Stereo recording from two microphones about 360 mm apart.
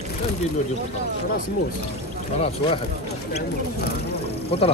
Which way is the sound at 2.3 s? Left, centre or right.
Centre.